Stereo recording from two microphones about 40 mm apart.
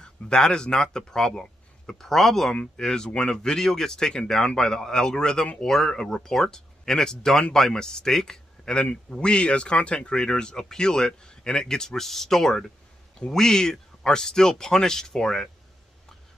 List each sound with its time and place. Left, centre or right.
0.0 s speech: centre
2.8 s speech: centre